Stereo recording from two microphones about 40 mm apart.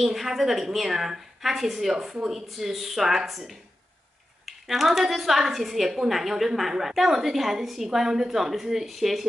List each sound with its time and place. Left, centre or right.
0.0 s a woman's voice: centre